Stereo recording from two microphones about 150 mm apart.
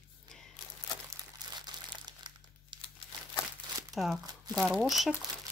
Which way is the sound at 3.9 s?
5° right (ahead or behind).